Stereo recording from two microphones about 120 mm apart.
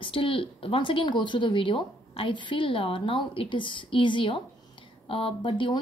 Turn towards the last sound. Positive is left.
turn(degrees=45)  # may be behind; listen again after turning